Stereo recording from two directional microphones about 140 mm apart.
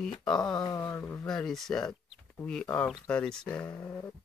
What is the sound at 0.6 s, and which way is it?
Speech, 20° left (ahead or behind).